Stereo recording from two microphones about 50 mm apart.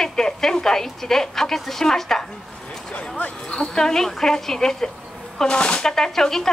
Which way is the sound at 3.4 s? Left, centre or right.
Centre.